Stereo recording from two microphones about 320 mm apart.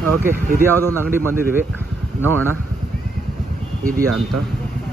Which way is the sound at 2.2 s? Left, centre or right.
Centre.